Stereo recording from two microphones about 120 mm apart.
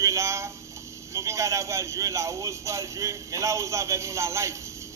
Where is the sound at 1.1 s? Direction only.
25° right (ahead or behind).